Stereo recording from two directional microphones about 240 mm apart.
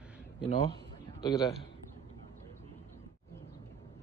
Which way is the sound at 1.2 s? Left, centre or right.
Centre.